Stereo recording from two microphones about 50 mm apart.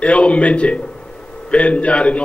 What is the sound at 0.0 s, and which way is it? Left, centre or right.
A man's voice, left.